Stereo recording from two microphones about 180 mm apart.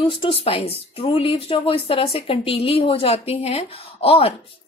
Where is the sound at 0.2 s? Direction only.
30° left (ahead or behind).